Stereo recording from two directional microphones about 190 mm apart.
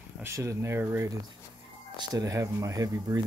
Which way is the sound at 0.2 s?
15° right (ahead or behind).